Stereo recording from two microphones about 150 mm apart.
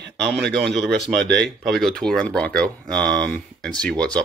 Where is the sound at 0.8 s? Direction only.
90° right.